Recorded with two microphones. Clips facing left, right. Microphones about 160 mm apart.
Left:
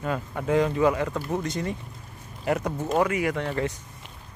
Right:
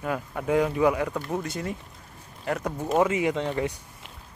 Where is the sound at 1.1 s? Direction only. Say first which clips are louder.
Left 1 dB; 5° left (ahead or behind).